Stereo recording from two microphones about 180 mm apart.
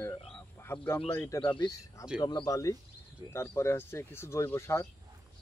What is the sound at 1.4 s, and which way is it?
Speech, 25° left (ahead or behind).